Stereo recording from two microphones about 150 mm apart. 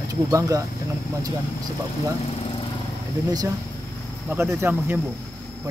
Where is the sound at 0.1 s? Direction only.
20° right (ahead or behind).